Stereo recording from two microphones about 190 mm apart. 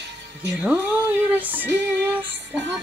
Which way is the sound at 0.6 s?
5° right (ahead or behind).